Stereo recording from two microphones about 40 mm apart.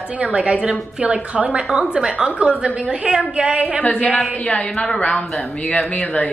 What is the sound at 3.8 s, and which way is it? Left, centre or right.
Speech, left.